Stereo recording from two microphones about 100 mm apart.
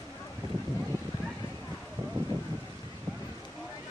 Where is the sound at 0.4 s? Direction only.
40° right (ahead or behind).